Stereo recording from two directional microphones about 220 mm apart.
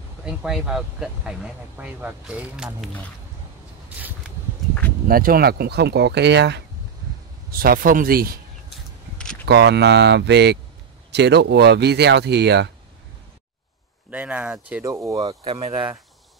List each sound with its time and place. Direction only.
0.2 s speech: 5° right (ahead or behind)
5.0 s speech: 40° right (ahead or behind)
8.7 s a sound: 5° left (ahead or behind)
9.5 s speech: 50° right (ahead or behind)
14.1 s speech: 5° right (ahead or behind)
15.1 s speech: 25° right (ahead or behind)